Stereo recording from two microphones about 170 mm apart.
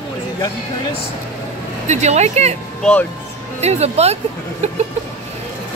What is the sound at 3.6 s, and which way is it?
Speech, 40° right (ahead or behind).